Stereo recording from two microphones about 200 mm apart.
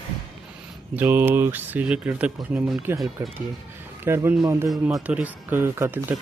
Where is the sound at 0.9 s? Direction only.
10° right (ahead or behind).